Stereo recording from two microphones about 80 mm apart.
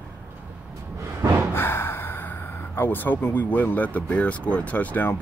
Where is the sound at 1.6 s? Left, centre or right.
Left.